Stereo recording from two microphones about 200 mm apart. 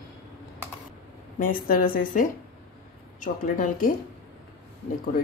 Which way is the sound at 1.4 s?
45° left (ahead or behind).